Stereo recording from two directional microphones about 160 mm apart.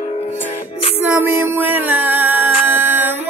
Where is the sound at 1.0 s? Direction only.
15° right (ahead or behind).